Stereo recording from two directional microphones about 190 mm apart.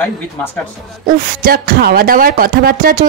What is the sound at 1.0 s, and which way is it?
Speech, 45° right (ahead or behind).